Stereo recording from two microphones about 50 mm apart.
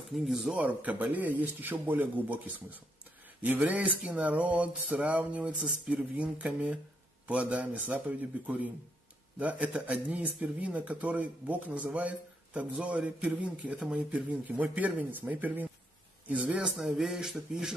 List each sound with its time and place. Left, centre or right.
0.1 s speech: centre
0.6 s speech: right
16.7 s speech: centre